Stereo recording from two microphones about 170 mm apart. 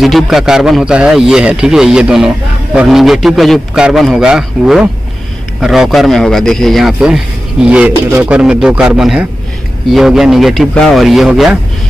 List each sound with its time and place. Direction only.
0.0 s a man's voice: centre (ahead or behind)